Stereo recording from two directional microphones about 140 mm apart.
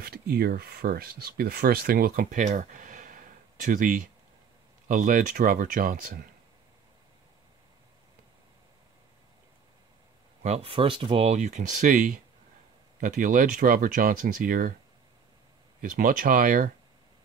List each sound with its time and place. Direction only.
0.0 s speech: 90° right
2.4 s a sound: 70° right (ahead or behind); by 4.1 s 85° right
4.8 s speech: 75° right (ahead or behind)
10.4 s speech: 45° right (ahead or behind)
11.3 s speech: 60° right (ahead or behind); by 14.7 s 80° right
15.8 s speech: 85° right